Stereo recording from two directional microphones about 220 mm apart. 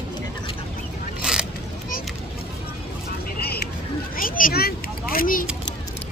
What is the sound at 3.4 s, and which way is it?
Vehicle, 45° left (ahead or behind).